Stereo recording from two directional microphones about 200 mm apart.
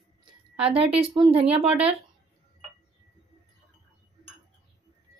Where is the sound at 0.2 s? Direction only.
30° right (ahead or behind).